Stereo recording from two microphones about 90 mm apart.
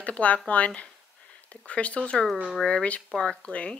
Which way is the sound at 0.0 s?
15° left (ahead or behind).